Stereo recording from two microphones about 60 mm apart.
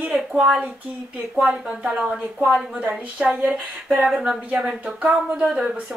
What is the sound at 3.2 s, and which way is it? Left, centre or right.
A woman's voice, centre.